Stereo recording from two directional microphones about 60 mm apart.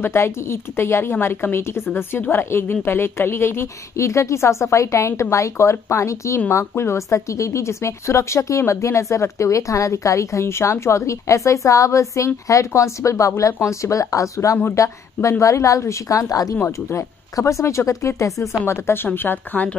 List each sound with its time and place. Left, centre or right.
0.0 s a woman's voice: left
6.5 s a woman's voice: left
10.4 s a woman's voice: left
16.6 s a woman's voice: left
18.7 s speech: left